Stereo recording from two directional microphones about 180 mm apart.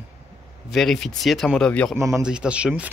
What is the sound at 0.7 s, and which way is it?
Speech, centre (ahead or behind).